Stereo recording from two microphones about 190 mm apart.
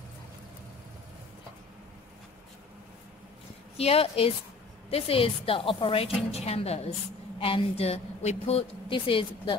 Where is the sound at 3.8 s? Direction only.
30° left (ahead or behind).